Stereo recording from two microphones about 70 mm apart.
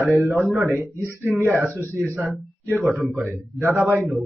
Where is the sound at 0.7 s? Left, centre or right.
Right.